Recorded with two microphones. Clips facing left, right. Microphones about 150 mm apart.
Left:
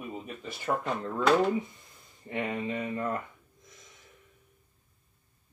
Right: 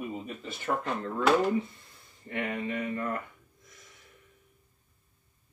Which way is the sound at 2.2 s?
20° left (ahead or behind).